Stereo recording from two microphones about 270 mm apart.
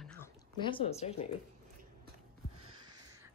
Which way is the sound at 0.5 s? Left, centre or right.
Centre.